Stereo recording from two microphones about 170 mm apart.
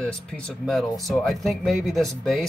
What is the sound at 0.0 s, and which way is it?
Speech, 5° left (ahead or behind).